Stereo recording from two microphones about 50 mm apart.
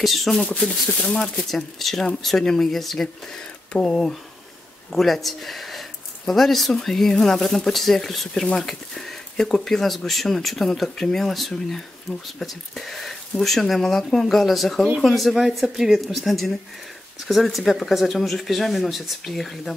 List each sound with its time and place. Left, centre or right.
0.0 s speech: centre
1.1 s speech: left
1.5 s speech: centre
3.7 s speech: centre
4.9 s speech: centre